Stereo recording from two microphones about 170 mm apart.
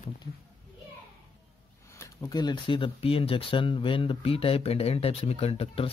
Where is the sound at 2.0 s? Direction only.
20° left (ahead or behind).